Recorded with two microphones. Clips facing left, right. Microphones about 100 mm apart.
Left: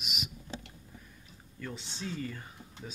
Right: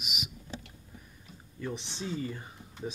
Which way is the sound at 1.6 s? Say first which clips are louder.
Right 3 dB; 20° right (ahead or behind).